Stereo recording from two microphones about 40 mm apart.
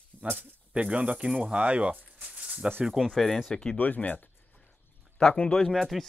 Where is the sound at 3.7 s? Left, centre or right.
Left.